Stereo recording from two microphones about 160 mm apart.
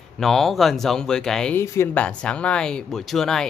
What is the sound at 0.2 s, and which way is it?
Speech, centre (ahead or behind).